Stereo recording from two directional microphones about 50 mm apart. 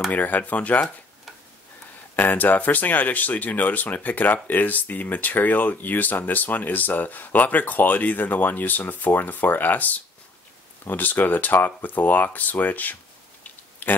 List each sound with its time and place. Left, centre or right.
0.1 s speech: left
2.1 s speech: left
13.4 s a sound: left